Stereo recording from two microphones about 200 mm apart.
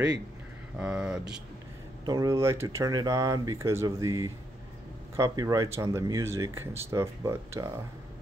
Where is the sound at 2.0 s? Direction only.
20° right (ahead or behind).